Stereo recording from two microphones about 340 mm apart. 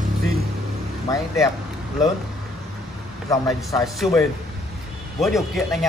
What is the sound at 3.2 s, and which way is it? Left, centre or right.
A man's voice, centre.